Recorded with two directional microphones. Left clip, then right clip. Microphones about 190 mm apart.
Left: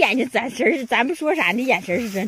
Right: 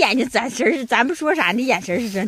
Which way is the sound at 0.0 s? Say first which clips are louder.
Right 1 dB; 15° right (ahead or behind).